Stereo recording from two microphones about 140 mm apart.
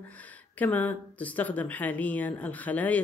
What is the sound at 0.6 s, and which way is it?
Speech, 10° left (ahead or behind).